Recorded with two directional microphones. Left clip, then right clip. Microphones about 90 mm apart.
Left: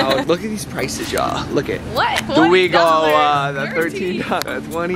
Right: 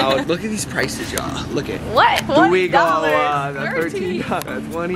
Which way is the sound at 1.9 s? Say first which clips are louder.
Right 3 dB; 20° right (ahead or behind).